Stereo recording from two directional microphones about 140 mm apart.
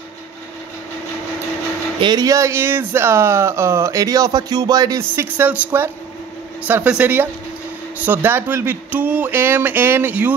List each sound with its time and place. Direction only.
2.0 s speech: 30° right (ahead or behind); by 10.3 s 15° right (ahead or behind)